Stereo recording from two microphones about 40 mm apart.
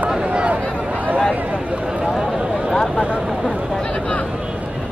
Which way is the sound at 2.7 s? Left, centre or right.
Centre.